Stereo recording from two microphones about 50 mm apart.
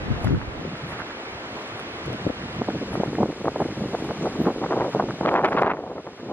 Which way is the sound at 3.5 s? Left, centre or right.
Right.